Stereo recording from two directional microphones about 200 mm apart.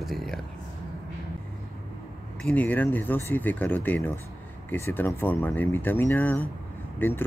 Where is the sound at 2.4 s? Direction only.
10° left (ahead or behind).